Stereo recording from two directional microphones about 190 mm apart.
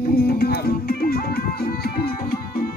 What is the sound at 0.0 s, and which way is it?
Music, 55° left (ahead or behind).